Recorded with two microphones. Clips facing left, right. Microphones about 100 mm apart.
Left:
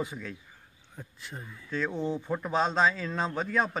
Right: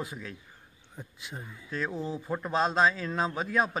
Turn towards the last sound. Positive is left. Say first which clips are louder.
# even
turn(degrees=-5)  # may be behind; listen again after turning